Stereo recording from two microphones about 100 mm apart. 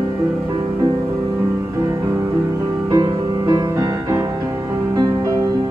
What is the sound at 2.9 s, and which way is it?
Music, 40° right (ahead or behind).